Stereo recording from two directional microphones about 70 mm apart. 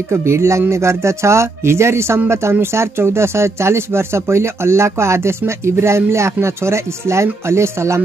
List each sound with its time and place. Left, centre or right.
0.1 s speech: right